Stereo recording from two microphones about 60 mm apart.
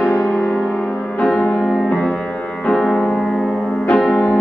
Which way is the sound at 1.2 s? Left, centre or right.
Centre.